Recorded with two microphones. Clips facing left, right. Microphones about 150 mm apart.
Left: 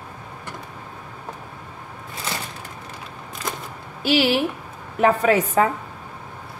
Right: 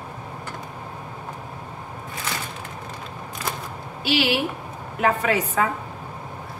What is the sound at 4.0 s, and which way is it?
A woman's voice, 45° left (ahead or behind).